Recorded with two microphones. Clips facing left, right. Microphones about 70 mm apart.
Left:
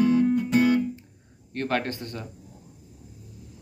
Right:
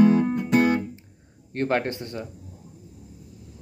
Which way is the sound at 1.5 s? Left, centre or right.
Right.